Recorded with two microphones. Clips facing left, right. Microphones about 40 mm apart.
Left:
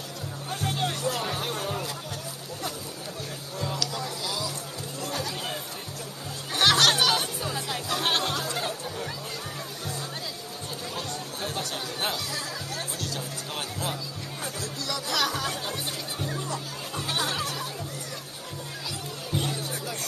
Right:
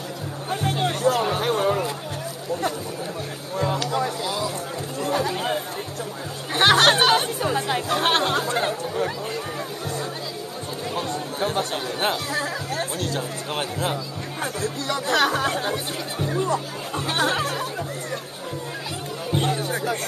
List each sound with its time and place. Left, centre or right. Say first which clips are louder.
0.5 s music: right 5 dB; right
1.3 s music: right 9 dB; right
3.5 s music: right 9 dB; right
5.0 s chatter: right 9 dB; right
11.0 s chatter: right 10 dB; right
11.4 s speech: right 8 dB; right
15.7 s speech: right 6 dB; centre
16.3 s speech: right 9 dB; right
19.3 s music: right 7 dB; right
19.6 s music: right 9 dB; right